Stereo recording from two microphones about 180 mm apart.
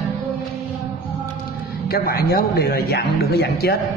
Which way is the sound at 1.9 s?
60° left (ahead or behind).